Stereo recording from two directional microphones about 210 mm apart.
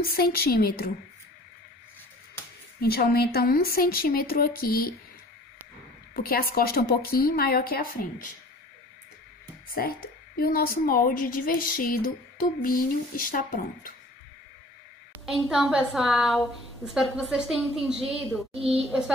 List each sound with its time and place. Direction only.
0.0 s a woman's voice: 45° left (ahead or behind)
2.8 s a woman's voice: 45° left (ahead or behind)
6.1 s a woman's voice: 45° left (ahead or behind)
9.8 s a woman's voice: 45° left (ahead or behind)
15.2 s a woman's voice: centre (ahead or behind)